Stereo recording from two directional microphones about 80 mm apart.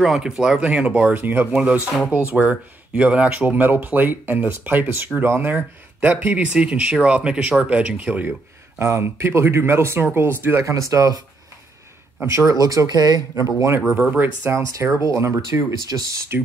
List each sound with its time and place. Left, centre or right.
0.0 s speech: centre; by 10.7 s right
10.7 s speech: right
12.3 s speech: right
12.5 s speech: right
13.7 s speech: right
14.5 s speech: right
15.9 s speech: right